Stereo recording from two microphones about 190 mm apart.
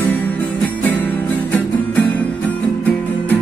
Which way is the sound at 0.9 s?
10° left (ahead or behind).